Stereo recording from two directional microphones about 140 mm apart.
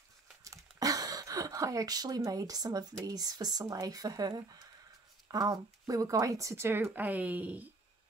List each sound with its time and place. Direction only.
0.4 s speech: 25° right (ahead or behind)